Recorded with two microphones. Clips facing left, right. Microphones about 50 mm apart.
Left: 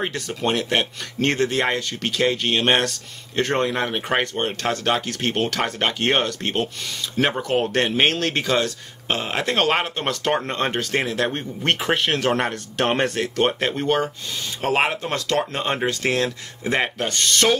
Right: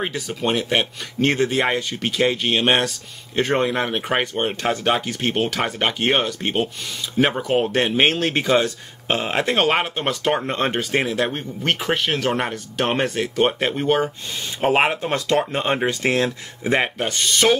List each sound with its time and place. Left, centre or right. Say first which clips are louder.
0.0 s speech: even; centre